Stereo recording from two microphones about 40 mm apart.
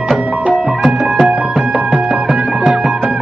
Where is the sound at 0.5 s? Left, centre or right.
Right.